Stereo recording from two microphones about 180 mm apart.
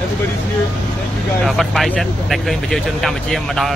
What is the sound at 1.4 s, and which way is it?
Speech, centre (ahead or behind).